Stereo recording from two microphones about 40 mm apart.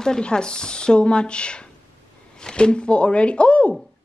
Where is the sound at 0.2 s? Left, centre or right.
Left.